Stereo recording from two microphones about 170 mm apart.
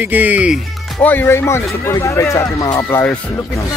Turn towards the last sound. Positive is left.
turn(degrees=10)  # may be behind; listen again after turning